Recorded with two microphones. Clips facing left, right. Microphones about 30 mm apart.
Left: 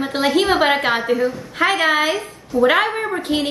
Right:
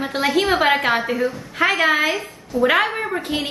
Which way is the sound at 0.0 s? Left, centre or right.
Centre.